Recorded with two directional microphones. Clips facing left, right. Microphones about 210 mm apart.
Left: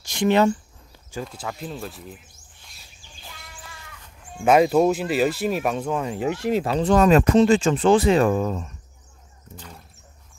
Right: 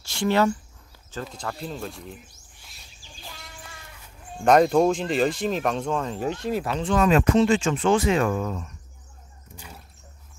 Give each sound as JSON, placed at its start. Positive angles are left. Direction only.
{"t": 0.0, "sound": "a sound", "side_deg": 15}
{"t": 1.2, "sound": "speech", "side_deg": 5}
{"t": 4.5, "sound": "speech", "side_deg": 5}
{"t": 6.5, "sound": "speech", "side_deg": 25}
{"t": 6.8, "sound": "speech", "side_deg": 40}
{"t": 9.6, "sound": "a sound", "side_deg": -5}